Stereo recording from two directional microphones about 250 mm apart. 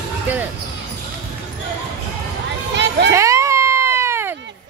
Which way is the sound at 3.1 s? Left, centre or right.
Centre.